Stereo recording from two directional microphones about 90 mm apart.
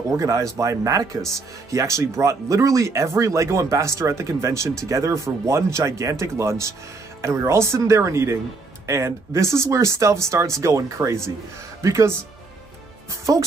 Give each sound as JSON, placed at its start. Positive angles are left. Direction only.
{"t": 0.2, "sound": "speech", "side_deg": -35}
{"t": 13.1, "sound": "speech", "side_deg": -40}